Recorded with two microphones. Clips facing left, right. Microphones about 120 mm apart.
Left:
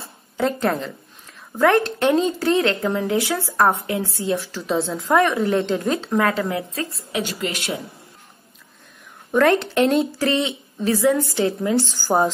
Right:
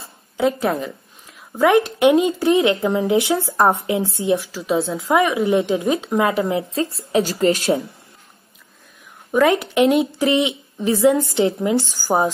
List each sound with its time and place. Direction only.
0.4 s a woman's voice: 5° right (ahead or behind); by 7.8 s 30° right (ahead or behind)
9.3 s a woman's voice: 5° right (ahead or behind)